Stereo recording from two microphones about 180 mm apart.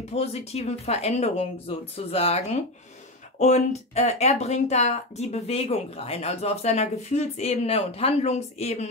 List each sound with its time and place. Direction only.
0.1 s speech: 35° left (ahead or behind)